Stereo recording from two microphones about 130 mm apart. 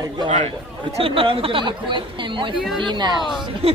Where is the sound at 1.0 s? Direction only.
45° right (ahead or behind).